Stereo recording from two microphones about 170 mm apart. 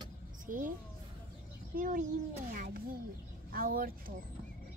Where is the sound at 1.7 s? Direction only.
50° right (ahead or behind).